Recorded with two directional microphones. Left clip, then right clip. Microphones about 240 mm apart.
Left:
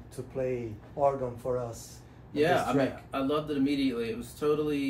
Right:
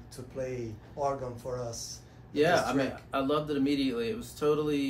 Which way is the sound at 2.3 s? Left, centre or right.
Centre.